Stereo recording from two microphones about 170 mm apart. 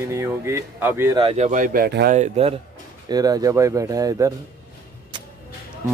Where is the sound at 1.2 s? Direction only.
40° right (ahead or behind); by 2.2 s 65° right (ahead or behind).